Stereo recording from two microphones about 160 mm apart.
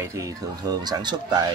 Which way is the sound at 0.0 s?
15° right (ahead or behind).